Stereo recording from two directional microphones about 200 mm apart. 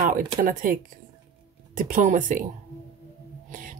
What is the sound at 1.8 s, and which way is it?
Speech, 40° right (ahead or behind).